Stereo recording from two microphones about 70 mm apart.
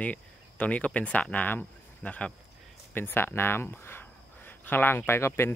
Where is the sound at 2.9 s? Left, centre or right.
Left.